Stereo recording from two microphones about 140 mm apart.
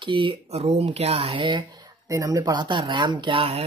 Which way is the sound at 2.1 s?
25° right (ahead or behind).